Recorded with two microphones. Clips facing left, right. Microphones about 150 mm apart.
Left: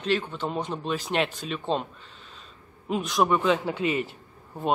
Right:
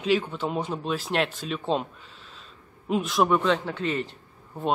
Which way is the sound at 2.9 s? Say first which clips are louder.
Right 1 dB; centre (ahead or behind).